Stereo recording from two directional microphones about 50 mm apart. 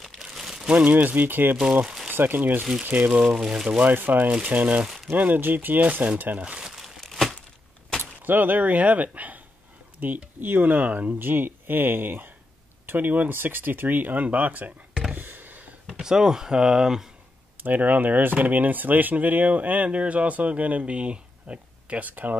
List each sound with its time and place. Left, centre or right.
0.2 s crumpling: centre
0.8 s speech: right
3.1 s speech: centre
3.8 s speech: right
6.4 s speech: centre
6.7 s crumpling: centre
8.3 s speech: right
15.1 s a sound: right
15.9 s speech: centre
17.6 s speech: right